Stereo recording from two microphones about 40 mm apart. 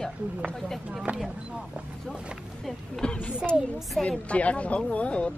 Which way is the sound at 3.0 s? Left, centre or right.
Left.